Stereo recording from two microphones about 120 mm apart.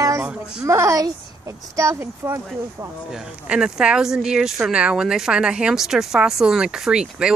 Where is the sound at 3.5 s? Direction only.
10° right (ahead or behind).